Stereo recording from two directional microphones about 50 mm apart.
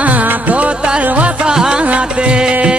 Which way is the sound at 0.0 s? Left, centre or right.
Right.